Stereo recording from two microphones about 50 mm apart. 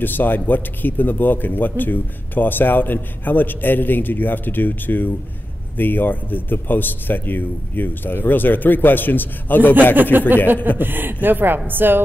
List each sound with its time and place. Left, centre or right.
0.0 s a man's voice: left
10.1 s speech: right